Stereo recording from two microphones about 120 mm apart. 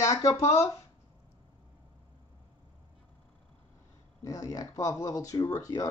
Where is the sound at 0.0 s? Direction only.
30° left (ahead or behind).